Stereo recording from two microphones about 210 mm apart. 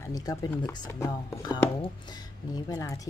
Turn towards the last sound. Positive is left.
turn(degrees=15)  # may be behind; listen again after turning